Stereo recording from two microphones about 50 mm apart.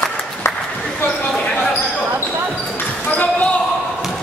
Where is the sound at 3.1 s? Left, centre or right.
Left.